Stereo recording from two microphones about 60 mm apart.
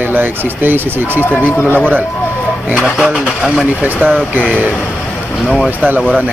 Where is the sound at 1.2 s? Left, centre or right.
Left.